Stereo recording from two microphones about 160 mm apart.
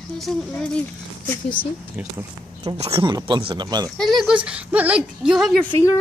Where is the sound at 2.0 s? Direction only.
10° right (ahead or behind).